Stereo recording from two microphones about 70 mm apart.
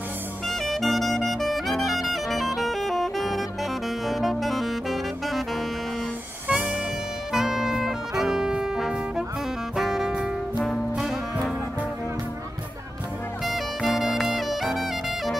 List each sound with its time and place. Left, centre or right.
0.7 s saxophone: centre
1.9 s music: centre
4.0 s saxophone: centre
6.4 s music: centre
7.3 s brass instrument: centre
9.8 s saxophone: centre
13.8 s saxophone: centre